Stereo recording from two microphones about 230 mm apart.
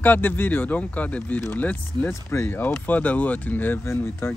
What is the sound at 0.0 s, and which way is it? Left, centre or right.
Speech, centre.